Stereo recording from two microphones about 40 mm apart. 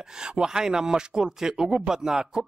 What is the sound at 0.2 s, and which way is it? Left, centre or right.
A man's voice, centre.